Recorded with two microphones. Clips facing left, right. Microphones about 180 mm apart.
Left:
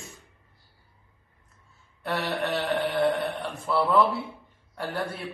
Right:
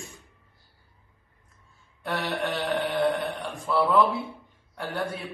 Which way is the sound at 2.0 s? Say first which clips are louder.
Left 1 dB; centre (ahead or behind).